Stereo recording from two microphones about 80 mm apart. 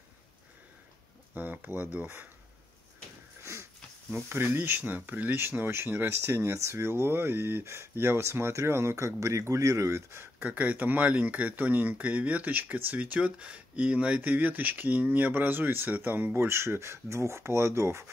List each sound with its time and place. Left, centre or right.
1.3 s speech: right
4.1 s speech: right
10.4 s speech: right